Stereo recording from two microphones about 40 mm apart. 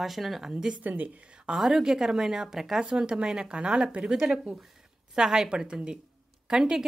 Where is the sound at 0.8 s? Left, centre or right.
Right.